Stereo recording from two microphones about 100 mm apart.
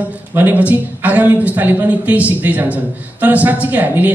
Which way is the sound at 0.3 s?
20° right (ahead or behind).